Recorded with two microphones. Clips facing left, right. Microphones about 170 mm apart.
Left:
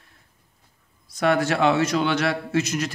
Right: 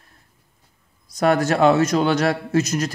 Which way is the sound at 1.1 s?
40° right (ahead or behind).